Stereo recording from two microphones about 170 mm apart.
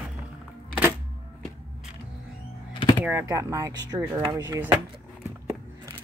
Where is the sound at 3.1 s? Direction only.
15° right (ahead or behind).